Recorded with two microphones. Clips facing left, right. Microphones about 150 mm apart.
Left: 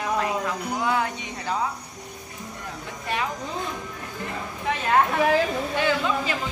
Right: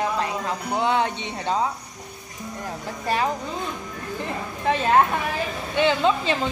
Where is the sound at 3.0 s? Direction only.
35° right (ahead or behind).